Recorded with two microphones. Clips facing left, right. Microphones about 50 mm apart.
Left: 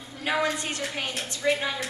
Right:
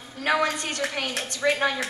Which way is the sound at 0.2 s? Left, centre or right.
Right.